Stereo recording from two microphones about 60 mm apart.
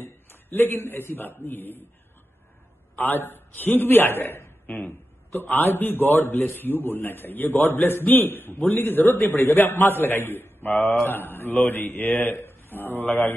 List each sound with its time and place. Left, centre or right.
0.0 s a man's voice: left
3.0 s a man's voice: left